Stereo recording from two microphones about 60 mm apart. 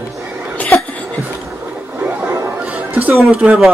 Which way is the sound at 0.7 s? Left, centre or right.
Left.